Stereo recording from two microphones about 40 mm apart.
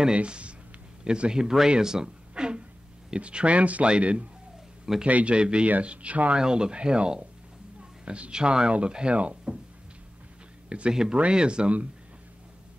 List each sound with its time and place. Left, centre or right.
0.0 s a man's voice: right
1.3 s speech: centre
1.7 s a sound: centre
3.2 s speech: right
6.3 s speech: right
10.7 s speech: right